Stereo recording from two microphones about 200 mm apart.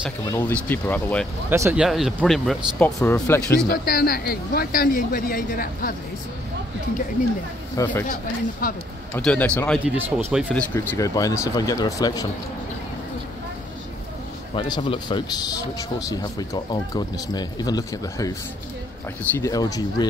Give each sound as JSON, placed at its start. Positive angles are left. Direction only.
{"t": 0.2, "sound": "speech", "side_deg": 10}
{"t": 1.5, "sound": "speech", "side_deg": -15}
{"t": 1.9, "sound": "speech", "side_deg": 0}
{"t": 3.0, "sound": "speech", "side_deg": 15}
{"t": 3.6, "sound": "a man's voice", "side_deg": 50}
{"t": 7.7, "sound": "speech", "side_deg": 10}
{"t": 8.6, "sound": "a man's voice", "side_deg": 45}
{"t": 9.1, "sound": "speech", "side_deg": 5}
{"t": 10.1, "sound": "speech", "side_deg": -5}
{"t": 10.6, "sound": "speech", "side_deg": 10}
{"t": 14.5, "sound": "speech", "side_deg": 25}
{"t": 19.3, "sound": "speech", "side_deg": 15}